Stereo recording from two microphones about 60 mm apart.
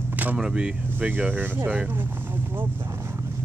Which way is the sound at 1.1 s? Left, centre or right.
Right.